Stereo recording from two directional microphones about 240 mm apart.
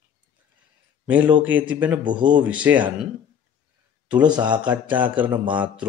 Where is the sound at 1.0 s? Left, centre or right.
Centre.